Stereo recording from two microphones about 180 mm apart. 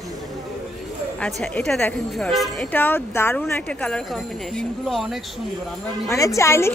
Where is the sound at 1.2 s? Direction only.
5° left (ahead or behind).